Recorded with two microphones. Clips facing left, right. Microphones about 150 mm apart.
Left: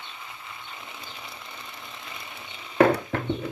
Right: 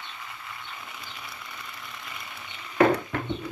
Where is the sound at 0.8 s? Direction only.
25° left (ahead or behind).